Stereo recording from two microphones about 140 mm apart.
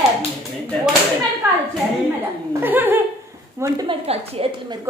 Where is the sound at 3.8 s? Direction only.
45° right (ahead or behind).